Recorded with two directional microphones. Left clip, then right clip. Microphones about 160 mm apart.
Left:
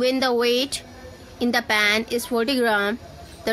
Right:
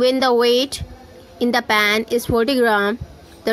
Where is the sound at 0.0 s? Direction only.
30° right (ahead or behind).